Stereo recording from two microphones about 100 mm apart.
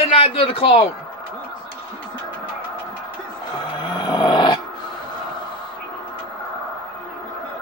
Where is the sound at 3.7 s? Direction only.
50° left (ahead or behind).